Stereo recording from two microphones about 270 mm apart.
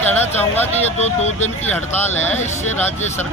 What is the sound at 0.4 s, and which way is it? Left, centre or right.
Speech, centre.